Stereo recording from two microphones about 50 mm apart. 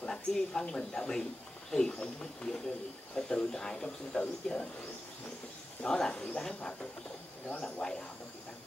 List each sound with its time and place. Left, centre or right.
0.0 s speech: centre
5.8 s speech: centre